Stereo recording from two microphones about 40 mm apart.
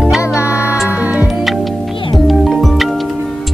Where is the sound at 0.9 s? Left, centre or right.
Right.